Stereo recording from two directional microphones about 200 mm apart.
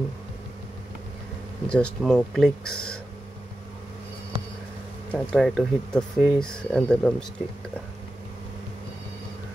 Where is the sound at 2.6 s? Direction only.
90° left.